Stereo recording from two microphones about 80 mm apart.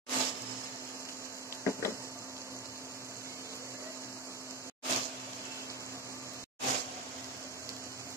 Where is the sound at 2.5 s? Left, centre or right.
Left.